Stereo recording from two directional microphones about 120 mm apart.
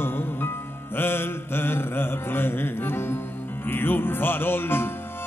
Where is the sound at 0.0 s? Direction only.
20° left (ahead or behind).